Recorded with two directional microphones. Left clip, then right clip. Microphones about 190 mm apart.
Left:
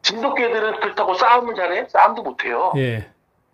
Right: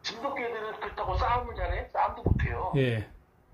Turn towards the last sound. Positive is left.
turn(degrees=25)  # may be behind; listen again after turning